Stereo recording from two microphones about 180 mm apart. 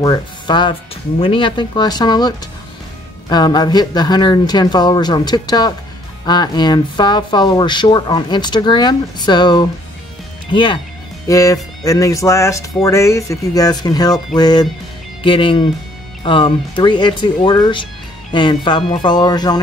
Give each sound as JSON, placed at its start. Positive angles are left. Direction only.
{"t": 0.0, "sound": "speech", "side_deg": 25}